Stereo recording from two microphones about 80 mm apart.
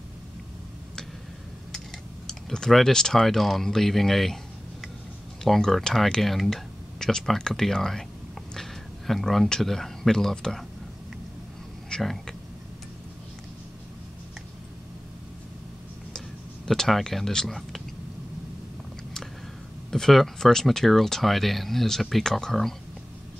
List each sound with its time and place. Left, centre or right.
2.2 s speech: centre
5.4 s speech: centre
11.9 s speech: centre
16.6 s speech: centre
19.9 s speech: centre